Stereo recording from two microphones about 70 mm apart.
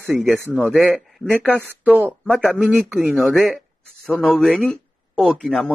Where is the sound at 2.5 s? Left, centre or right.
Right.